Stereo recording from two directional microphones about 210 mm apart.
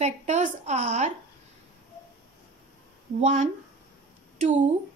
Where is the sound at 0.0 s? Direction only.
35° right (ahead or behind).